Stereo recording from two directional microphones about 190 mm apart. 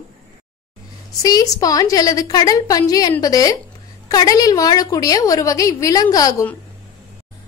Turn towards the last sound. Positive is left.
turn(degrees=20)  # may be behind; listen again after turning